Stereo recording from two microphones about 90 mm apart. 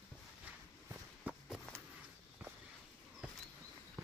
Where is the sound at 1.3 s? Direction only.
10° right (ahead or behind).